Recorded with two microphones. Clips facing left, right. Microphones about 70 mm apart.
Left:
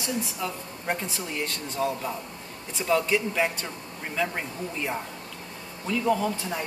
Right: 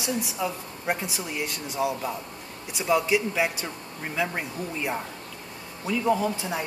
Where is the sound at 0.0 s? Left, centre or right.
Centre.